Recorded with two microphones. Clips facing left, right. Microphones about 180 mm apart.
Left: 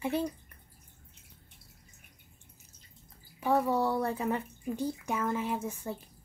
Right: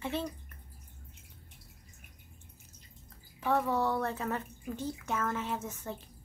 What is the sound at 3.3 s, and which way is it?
Speech, 10° left (ahead or behind).